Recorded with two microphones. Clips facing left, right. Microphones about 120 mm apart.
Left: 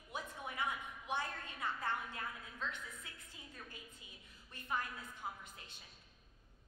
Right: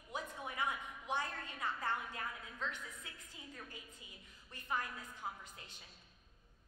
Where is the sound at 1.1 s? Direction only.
20° right (ahead or behind).